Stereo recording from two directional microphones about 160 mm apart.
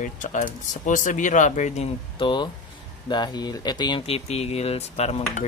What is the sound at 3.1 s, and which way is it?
Speech, 25° left (ahead or behind).